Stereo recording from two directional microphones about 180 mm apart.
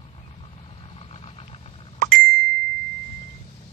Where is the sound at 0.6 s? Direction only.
30° left (ahead or behind).